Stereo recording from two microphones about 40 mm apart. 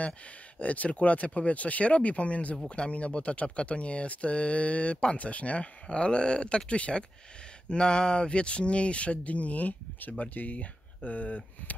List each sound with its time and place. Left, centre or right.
0.6 s speech: left